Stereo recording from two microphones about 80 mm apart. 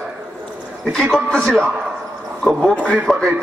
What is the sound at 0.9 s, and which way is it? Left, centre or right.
Speech, centre.